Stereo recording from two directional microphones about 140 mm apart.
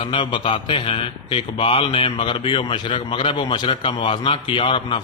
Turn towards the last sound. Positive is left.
turn(degrees=35)  # may be behind; listen again after turning